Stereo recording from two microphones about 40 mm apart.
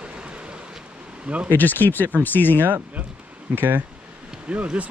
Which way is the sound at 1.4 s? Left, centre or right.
Left.